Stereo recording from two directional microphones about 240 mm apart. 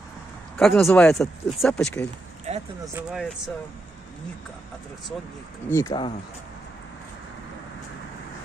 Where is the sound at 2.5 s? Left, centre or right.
Right.